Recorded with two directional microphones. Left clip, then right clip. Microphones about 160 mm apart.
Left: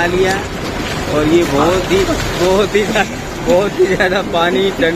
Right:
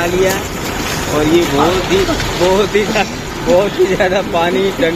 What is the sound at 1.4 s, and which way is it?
Speech, 50° right (ahead or behind).